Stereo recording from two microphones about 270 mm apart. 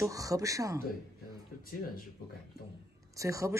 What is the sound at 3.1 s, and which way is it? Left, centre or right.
Speech, centre.